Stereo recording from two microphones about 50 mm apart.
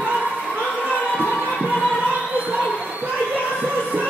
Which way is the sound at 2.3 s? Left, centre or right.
Right.